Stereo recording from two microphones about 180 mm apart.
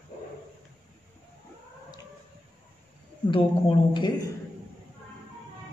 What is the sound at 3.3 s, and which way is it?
A woman's voice, 25° left (ahead or behind).